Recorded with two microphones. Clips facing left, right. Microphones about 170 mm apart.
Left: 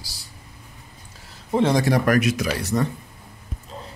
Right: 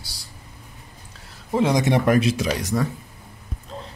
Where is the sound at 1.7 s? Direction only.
20° right (ahead or behind).